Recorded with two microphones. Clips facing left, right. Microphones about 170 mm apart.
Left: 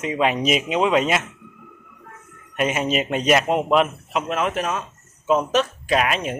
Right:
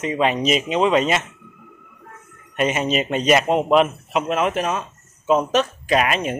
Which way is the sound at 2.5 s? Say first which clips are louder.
Right 1 dB; 5° left (ahead or behind).